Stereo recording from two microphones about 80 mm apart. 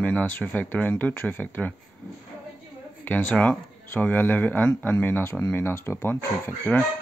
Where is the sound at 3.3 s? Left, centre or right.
Centre.